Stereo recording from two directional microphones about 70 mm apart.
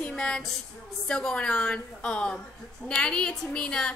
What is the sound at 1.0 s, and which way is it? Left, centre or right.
Music, centre.